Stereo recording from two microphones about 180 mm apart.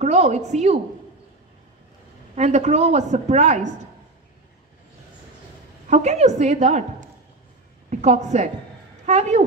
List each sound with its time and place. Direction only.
0.0 s a woman's voice: 40° right (ahead or behind)
2.3 s a woman's voice: 40° right (ahead or behind)
5.9 s a woman's voice: 40° right (ahead or behind)